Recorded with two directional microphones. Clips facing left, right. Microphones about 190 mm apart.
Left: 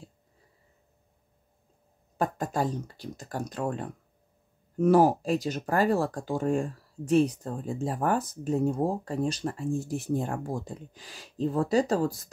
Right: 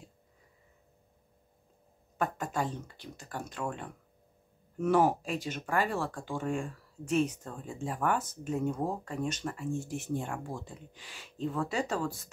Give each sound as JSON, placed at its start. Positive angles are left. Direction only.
{"t": 2.1, "sound": "speech", "side_deg": 35}